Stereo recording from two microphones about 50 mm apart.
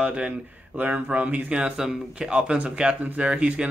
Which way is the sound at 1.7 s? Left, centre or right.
Centre.